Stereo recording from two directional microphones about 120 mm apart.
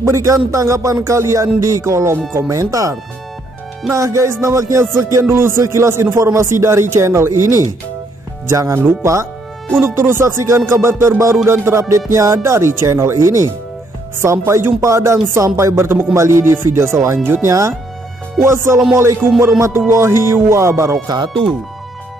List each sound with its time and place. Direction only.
0.0 s speech: 25° right (ahead or behind)